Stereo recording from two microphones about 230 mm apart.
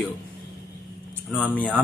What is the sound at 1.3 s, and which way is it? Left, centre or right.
Speech, centre.